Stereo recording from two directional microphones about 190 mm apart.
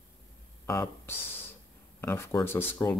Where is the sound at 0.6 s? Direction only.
15° left (ahead or behind).